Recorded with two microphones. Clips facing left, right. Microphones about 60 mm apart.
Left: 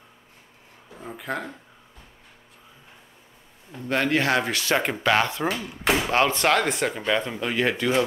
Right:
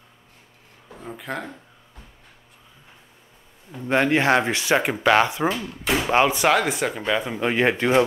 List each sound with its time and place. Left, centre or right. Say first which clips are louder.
0.9 s speech: even; centre
3.8 s speech: right 4 dB; right
7.3 s speech: right 4 dB; right